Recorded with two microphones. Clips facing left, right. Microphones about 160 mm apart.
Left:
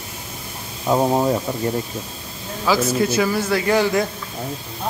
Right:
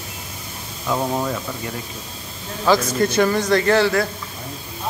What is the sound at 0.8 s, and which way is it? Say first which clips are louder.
Speech: left 5 dB; 30° left (ahead or behind).